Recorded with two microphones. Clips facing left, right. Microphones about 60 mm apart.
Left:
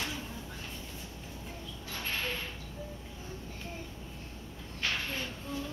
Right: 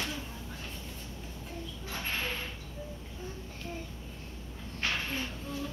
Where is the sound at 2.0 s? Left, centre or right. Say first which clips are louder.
Even; centre.